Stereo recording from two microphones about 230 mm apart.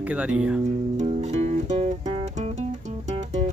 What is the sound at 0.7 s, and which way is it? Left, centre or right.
Music, right.